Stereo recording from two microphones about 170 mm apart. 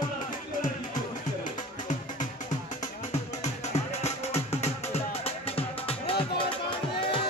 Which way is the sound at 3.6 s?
40° left (ahead or behind).